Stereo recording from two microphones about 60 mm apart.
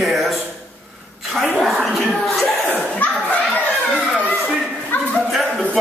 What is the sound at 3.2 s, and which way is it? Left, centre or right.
Speech, left.